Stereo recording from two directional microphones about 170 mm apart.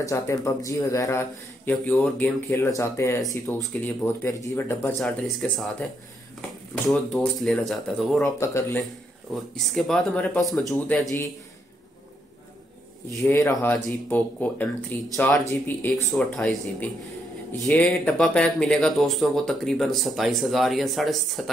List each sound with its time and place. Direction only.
0.0 s speech: 20° left (ahead or behind)
5.0 s speech: centre (ahead or behind)
8.2 s speech: 15° left (ahead or behind)
9.6 s speech: centre (ahead or behind)
13.2 s speech: 15° left (ahead or behind); by 21.5 s centre (ahead or behind)